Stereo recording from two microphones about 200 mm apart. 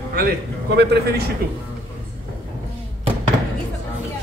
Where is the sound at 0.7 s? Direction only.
55° right (ahead or behind).